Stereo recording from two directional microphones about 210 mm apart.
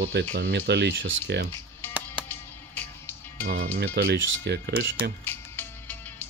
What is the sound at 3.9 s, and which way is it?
Speech, 50° right (ahead or behind).